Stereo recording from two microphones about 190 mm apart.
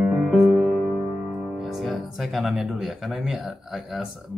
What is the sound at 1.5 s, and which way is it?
Speech, centre (ahead or behind).